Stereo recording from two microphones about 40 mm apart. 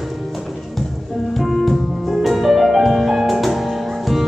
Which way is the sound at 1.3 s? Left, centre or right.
Centre.